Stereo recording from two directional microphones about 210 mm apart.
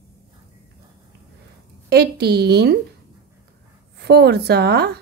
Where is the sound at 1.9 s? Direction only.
50° right (ahead or behind).